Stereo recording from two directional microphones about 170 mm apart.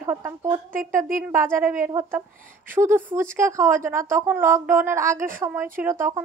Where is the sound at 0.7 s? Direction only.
50° right (ahead or behind).